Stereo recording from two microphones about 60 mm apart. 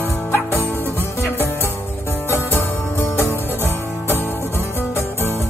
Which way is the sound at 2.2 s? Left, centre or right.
Left.